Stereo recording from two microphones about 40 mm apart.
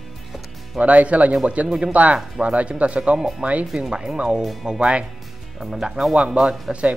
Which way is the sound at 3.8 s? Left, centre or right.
Right.